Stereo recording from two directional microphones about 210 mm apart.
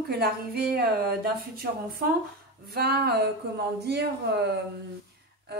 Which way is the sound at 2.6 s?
50° right (ahead or behind).